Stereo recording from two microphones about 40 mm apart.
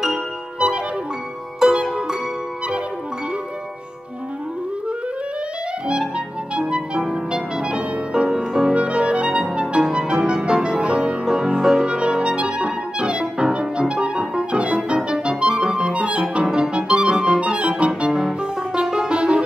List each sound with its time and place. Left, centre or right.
0.6 s music: right
1.6 s harp: centre
5.9 s clarinet: right
7.2 s music: right
8.7 s music: right
14.9 s clarinet: right
16.4 s music: centre
17.4 s clarinet: right
18.1 s music: centre